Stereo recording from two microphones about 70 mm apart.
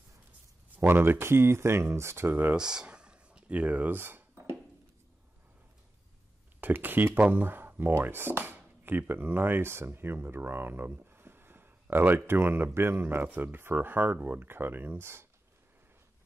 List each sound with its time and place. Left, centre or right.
0.7 s speech: right
2.5 s a sound: centre; by 4.6 s right
6.6 s speech: right